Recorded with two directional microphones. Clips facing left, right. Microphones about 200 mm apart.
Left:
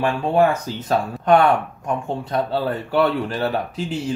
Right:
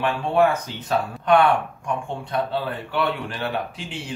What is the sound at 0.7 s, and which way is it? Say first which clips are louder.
Speech: left 3 dB; 40° left (ahead or behind).